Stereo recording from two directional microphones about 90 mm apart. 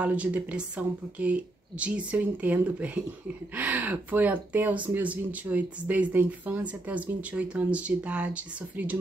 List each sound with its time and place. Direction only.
0.0 s speech: 15° right (ahead or behind)